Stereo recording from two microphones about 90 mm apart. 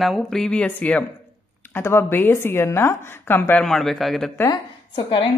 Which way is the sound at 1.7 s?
25° left (ahead or behind).